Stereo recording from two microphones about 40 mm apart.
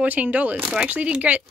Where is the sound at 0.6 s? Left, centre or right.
Centre.